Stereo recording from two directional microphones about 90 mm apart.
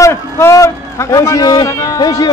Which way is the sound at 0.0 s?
30° left (ahead or behind).